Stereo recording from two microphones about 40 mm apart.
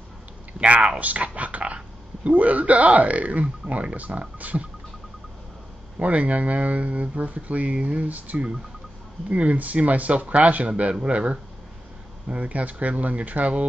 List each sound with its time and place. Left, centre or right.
0.6 s speech: right
5.9 s speech: right